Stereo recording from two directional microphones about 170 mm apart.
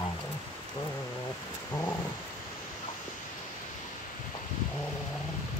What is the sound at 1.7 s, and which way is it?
Purr, 15° left (ahead or behind).